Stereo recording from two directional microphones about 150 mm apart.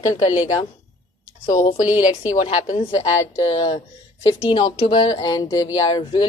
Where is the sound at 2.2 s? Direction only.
40° left (ahead or behind).